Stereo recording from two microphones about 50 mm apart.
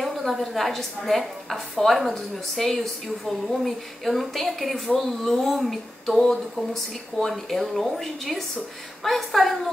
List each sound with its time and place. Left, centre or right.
0.0 s a woman's voice: centre